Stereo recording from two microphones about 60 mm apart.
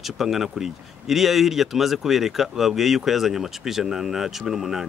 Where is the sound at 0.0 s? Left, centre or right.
Centre.